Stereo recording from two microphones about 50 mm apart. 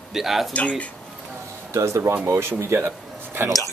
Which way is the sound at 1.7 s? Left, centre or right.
Right.